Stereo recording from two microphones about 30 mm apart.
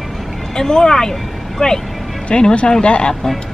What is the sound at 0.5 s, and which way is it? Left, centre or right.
Speech, left.